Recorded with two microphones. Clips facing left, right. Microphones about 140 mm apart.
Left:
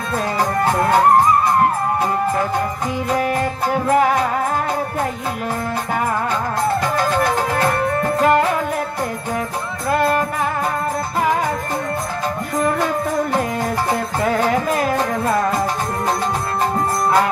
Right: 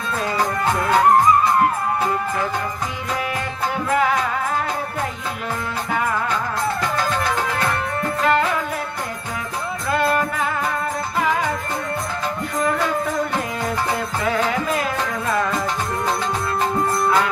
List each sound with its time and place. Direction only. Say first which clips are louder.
3.9 s music: left 4 dB; 40° left (ahead or behind)
7.2 s music: left 4 dB; 45° left (ahead or behind)
9.8 s music: left 3 dB; 40° left (ahead or behind)
14.2 s music: left 4 dB; 45° left (ahead or behind)